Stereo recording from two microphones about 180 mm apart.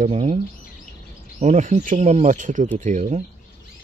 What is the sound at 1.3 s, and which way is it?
Speech, 40° right (ahead or behind).